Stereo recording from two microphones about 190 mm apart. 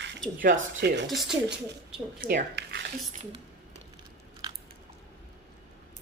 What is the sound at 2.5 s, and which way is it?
Speech, 65° right (ahead or behind).